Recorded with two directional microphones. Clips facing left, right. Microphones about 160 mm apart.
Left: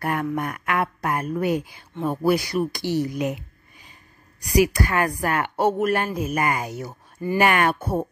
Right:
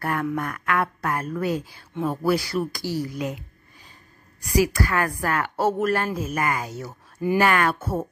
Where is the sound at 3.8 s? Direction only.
15° left (ahead or behind).